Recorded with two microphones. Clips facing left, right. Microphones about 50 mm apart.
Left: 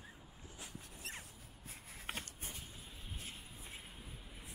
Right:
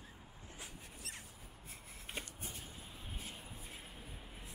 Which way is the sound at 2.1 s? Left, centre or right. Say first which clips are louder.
Left 1 dB; left.